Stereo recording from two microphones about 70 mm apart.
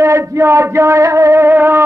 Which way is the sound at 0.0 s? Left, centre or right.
Right.